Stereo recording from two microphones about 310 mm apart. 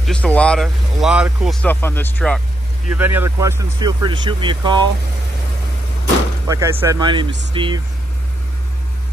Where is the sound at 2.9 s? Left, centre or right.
Centre.